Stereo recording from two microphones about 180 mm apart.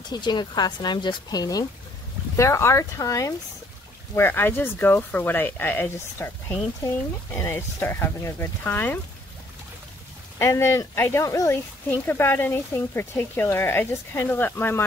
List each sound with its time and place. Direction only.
0.1 s speech: 25° left (ahead or behind)
10.4 s speech: 15° left (ahead or behind)